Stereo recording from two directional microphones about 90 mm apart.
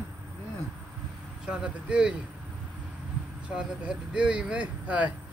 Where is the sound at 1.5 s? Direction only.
10° right (ahead or behind).